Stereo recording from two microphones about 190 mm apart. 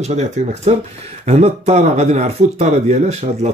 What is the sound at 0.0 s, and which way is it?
Speech, 35° right (ahead or behind).